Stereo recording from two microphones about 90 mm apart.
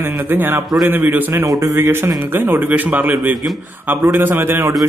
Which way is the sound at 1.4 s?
35° right (ahead or behind).